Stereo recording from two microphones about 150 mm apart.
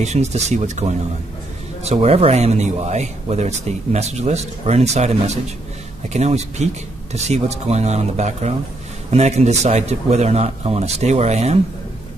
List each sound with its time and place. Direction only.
0.0 s speech: 50° right (ahead or behind)